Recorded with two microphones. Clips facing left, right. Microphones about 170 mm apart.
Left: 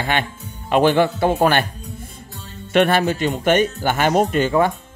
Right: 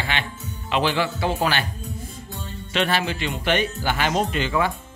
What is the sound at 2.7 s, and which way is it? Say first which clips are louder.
Speech: left 7 dB; 50° left (ahead or behind).